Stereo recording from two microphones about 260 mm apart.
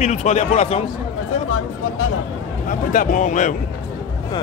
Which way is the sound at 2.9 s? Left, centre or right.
Left.